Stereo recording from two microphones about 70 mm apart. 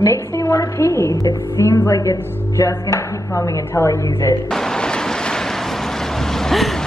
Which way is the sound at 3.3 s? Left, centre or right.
Left.